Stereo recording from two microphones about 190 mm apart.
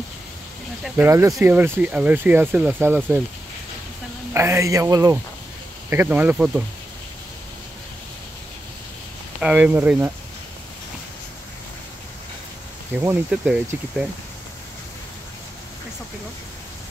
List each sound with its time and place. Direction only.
0.8 s speech: 10° right (ahead or behind)
4.3 s speech: 15° right (ahead or behind)
9.4 s speech: 5° right (ahead or behind)
12.9 s speech: 10° right (ahead or behind)